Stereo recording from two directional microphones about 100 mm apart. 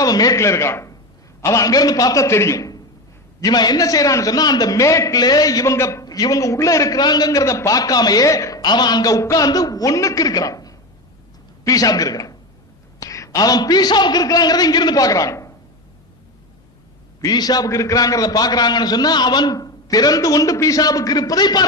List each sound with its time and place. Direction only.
0.0 s a man's voice: 40° left (ahead or behind)
8.6 s a man's voice: 45° left (ahead or behind)
17.2 s a man's voice: 40° left (ahead or behind)